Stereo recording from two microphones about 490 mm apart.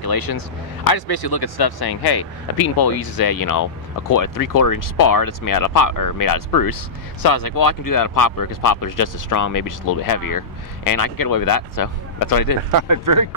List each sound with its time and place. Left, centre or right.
0.0 s speech: left
12.7 s speech: right